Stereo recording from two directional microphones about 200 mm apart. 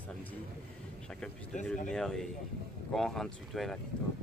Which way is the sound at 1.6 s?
5° left (ahead or behind).